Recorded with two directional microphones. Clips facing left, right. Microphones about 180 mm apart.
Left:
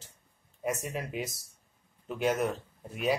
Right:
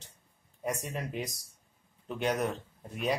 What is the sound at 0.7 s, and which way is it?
Speech, 5° left (ahead or behind).